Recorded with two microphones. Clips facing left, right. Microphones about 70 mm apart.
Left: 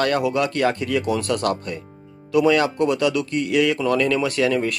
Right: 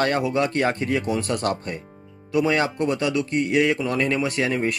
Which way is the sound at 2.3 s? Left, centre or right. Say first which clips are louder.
Left 4 dB; right.